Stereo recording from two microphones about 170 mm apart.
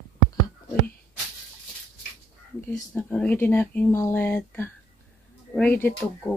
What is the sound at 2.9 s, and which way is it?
Speech, 10° left (ahead or behind).